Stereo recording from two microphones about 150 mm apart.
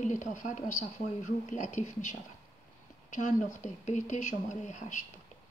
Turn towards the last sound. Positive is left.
turn(degrees=55)  # may be behind; listen again after turning